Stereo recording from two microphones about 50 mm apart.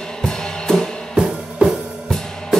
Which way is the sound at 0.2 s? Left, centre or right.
Centre.